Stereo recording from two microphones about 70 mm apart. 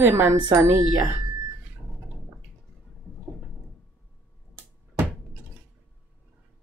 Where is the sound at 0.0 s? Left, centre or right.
Right.